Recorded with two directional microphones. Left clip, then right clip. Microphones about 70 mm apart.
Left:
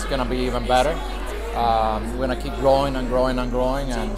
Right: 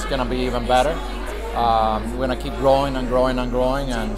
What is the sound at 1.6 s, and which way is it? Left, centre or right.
Speech, centre.